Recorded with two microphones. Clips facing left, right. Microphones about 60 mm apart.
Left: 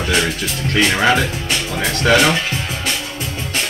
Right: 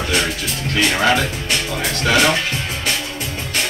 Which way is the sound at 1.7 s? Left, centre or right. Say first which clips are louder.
Left 4 dB; left.